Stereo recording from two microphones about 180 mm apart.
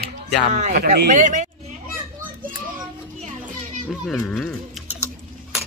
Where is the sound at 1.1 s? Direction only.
40° right (ahead or behind).